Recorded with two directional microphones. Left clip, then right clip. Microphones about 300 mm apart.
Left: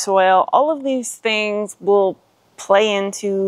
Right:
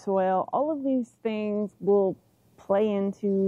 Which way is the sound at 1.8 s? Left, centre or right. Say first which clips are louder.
Left 8 dB; left.